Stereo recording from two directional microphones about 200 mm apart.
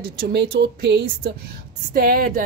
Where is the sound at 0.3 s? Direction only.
55° right (ahead or behind).